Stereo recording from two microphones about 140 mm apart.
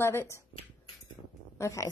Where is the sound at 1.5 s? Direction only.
20° left (ahead or behind).